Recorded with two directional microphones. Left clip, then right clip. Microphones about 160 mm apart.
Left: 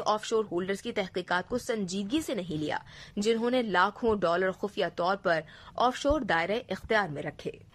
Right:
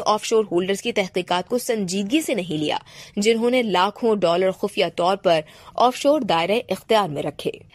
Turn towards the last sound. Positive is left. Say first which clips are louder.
# right 11 dB
turn(degrees=-20)  # may be behind; listen again after turning